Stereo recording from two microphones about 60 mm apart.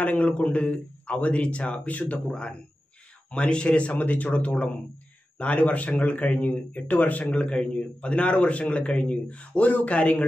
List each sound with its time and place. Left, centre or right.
0.0 s speech: left